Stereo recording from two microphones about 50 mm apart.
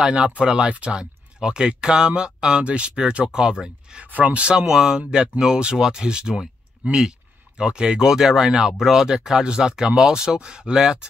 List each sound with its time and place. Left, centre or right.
0.0 s speech: right
4.1 s speech: right